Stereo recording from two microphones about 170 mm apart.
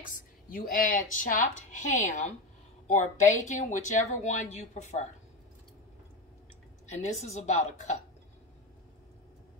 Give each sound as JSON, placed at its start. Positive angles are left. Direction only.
{"t": 0.0, "sound": "a woman's voice", "side_deg": 55}
{"t": 6.9, "sound": "a woman's voice", "side_deg": 45}